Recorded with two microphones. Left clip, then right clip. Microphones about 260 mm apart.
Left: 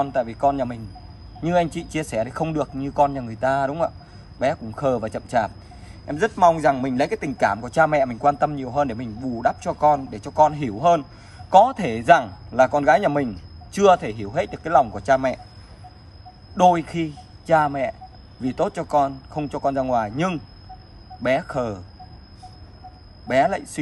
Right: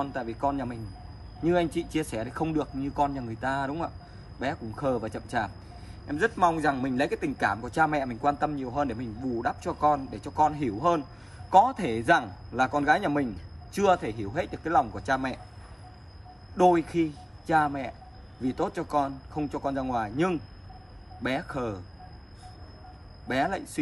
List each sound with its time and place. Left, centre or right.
0.0 s a man's voice: left
16.5 s a man's voice: left
23.2 s a man's voice: left